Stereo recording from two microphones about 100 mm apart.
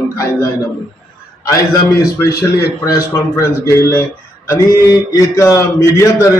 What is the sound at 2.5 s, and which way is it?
Speech, 35° left (ahead or behind).